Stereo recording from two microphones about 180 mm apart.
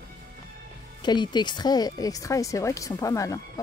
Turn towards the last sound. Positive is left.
turn(degrees=20)  # may be behind; listen again after turning